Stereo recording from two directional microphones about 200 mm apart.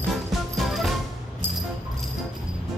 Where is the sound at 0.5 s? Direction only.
Centre (ahead or behind).